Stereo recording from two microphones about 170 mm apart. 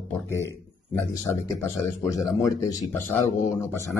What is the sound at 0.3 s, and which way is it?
A man's voice, 15° left (ahead or behind).